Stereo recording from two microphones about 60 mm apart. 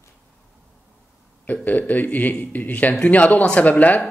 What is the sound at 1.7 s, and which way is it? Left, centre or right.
Speech, left.